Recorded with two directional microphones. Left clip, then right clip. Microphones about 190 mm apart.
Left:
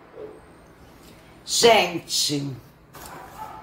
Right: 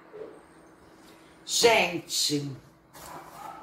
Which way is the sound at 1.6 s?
35° left (ahead or behind).